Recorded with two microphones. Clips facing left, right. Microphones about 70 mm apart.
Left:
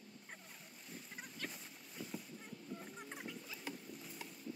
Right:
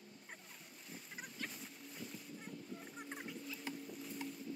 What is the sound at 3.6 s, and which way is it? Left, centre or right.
Boat, centre.